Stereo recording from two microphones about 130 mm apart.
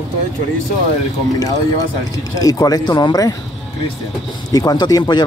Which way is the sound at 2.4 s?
30° left (ahead or behind).